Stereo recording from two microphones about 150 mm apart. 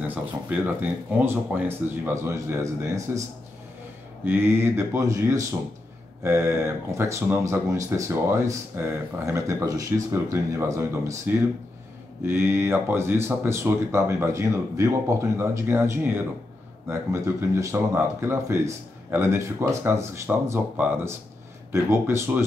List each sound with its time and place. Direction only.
0.1 s speech: 10° right (ahead or behind)